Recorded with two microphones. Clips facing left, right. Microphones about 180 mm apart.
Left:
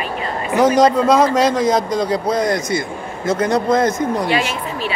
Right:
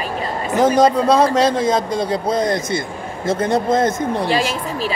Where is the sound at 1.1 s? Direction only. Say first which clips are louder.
Even; 30° right (ahead or behind).